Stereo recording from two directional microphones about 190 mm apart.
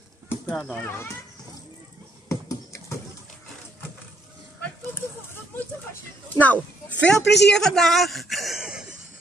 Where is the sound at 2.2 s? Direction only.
15° left (ahead or behind).